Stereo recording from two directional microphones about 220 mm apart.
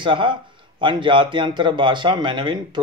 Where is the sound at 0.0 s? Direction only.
20° right (ahead or behind).